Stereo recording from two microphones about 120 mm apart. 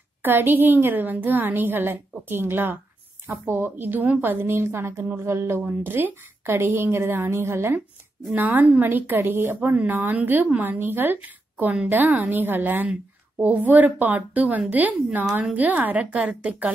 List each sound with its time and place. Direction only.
0.2 s a woman's voice: 15° right (ahead or behind)